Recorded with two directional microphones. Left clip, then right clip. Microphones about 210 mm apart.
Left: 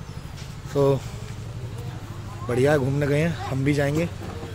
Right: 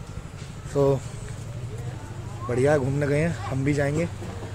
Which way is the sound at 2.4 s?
10° left (ahead or behind).